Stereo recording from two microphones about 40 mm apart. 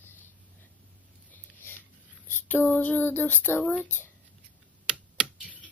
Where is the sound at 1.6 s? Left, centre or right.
Left.